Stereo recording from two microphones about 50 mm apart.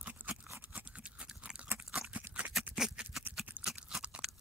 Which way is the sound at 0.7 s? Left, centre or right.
Right.